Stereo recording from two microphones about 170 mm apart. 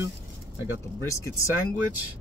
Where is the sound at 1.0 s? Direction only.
15° left (ahead or behind).